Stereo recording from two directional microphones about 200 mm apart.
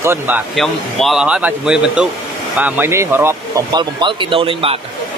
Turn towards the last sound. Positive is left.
turn(degrees=-25)  # may be behind; listen again after turning